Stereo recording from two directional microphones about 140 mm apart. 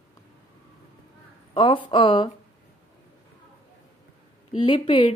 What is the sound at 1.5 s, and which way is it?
Speech, 40° left (ahead or behind).